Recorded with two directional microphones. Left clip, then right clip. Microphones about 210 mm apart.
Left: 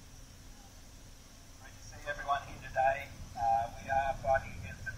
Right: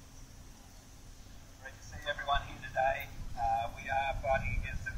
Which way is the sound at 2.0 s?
15° right (ahead or behind).